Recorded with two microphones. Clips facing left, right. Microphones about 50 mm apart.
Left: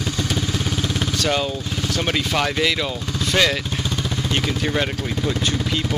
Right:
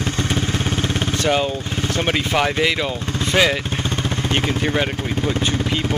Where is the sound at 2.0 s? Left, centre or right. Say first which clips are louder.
Right 2 dB; centre.